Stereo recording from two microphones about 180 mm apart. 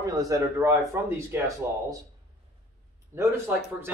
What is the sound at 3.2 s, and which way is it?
Speech, 15° right (ahead or behind).